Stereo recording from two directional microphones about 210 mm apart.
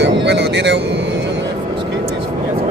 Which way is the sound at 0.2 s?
55° right (ahead or behind).